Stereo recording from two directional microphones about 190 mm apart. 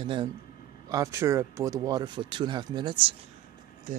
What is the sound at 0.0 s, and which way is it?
Speech, 25° right (ahead or behind).